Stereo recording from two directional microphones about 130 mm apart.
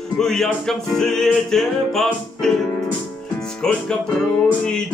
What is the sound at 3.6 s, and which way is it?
Music, 5° left (ahead or behind).